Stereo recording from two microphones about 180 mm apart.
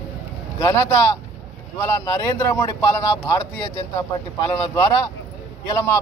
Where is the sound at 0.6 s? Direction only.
15° left (ahead or behind).